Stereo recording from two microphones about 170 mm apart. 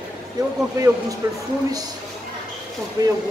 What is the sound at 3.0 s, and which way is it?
Speech, 20° right (ahead or behind).